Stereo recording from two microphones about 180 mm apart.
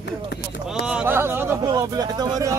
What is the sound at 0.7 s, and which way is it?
Speech, 5° right (ahead or behind).